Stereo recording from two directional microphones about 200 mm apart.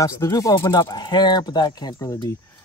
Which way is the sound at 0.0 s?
15° left (ahead or behind).